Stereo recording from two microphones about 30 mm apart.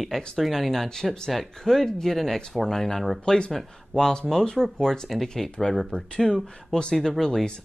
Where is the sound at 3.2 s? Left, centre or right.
Left; by 5.8 s centre.